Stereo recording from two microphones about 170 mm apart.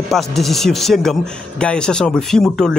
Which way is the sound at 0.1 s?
Centre (ahead or behind).